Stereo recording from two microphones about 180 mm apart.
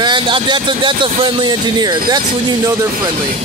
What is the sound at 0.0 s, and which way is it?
Speech, 25° right (ahead or behind).